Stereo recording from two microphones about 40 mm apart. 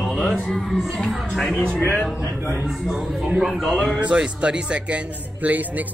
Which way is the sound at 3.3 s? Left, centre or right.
Centre.